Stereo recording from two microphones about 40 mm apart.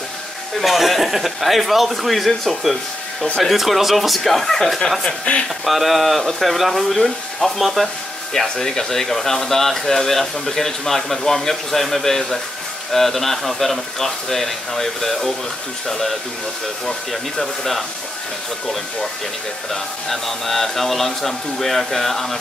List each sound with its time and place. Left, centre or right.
0.6 s a man's voice: centre
5.3 s speech: left
5.7 s a man's voice: centre
8.3 s a man's voice: centre
19.7 s a man's voice: centre